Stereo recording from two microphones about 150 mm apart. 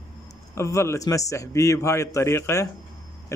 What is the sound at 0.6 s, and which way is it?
A man's voice, 20° left (ahead or behind).